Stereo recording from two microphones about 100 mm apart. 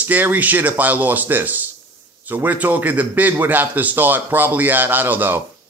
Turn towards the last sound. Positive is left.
turn(degrees=-20)  # may be behind; listen again after turning